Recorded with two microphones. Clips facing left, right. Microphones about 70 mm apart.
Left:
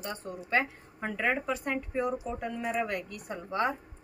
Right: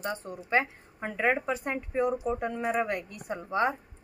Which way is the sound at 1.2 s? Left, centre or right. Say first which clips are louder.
Right 3 dB; centre.